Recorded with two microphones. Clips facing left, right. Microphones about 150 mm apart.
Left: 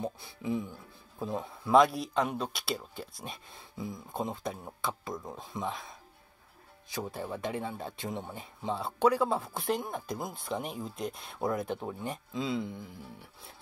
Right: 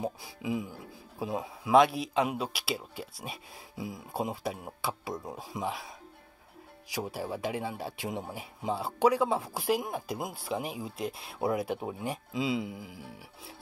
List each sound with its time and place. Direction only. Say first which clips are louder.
0.2 s speech: even; 90° right
1.2 s speech: right 1 dB; 10° right (ahead or behind)